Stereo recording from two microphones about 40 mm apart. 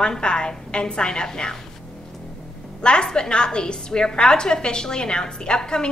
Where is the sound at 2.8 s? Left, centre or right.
Left.